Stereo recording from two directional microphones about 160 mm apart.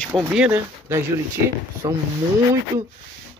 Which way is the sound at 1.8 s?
20° right (ahead or behind).